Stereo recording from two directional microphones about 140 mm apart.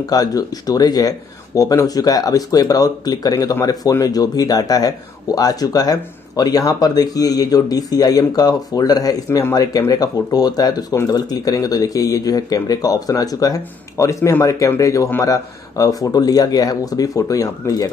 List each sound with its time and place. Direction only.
0.0 s speech: 25° left (ahead or behind)